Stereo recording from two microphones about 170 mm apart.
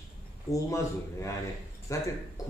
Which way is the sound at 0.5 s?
20° left (ahead or behind).